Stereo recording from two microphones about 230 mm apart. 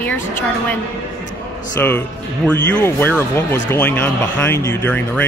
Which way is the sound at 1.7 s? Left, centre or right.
Centre.